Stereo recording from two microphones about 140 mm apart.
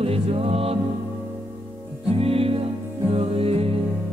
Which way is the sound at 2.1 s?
45° right (ahead or behind).